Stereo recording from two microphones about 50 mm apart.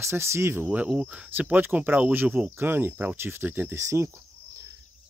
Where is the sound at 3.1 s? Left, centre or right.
Right.